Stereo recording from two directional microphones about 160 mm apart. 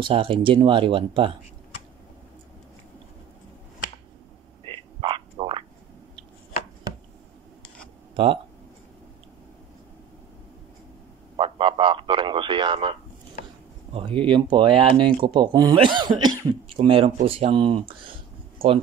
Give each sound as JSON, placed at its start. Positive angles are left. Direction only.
{"t": 0.0, "sound": "speech", "side_deg": -35}
{"t": 4.6, "sound": "frog", "side_deg": -35}
{"t": 11.3, "sound": "a sound", "side_deg": -35}
{"t": 13.9, "sound": "speech", "side_deg": -35}